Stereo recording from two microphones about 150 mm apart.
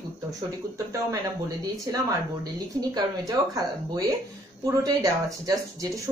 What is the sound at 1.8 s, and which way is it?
Speech, 20° right (ahead or behind).